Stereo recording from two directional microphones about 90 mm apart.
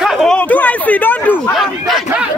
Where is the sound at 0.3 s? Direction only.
15° left (ahead or behind).